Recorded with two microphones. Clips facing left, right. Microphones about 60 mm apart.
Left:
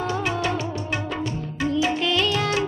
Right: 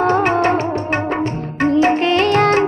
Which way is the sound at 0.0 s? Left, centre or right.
Right.